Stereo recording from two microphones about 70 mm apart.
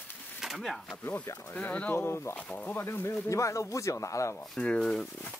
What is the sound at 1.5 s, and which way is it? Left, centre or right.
Speech, left.